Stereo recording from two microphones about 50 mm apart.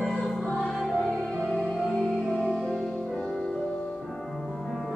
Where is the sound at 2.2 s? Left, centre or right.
Centre.